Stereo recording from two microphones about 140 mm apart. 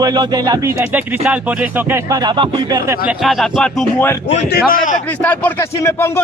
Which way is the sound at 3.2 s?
Centre (ahead or behind).